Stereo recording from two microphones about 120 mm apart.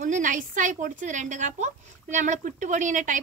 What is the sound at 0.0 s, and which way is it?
A woman's voice, 90° right.